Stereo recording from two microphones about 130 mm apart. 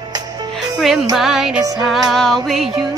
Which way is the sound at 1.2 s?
5° right (ahead or behind).